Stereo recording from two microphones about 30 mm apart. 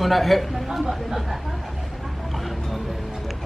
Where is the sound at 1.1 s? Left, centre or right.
Centre.